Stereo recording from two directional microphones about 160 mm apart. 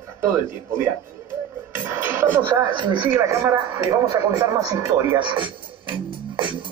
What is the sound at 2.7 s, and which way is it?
Speech, 30° right (ahead or behind).